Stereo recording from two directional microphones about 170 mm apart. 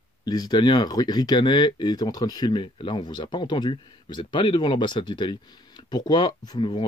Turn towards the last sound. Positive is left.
turn(degrees=25)  # may be behind; listen again after turning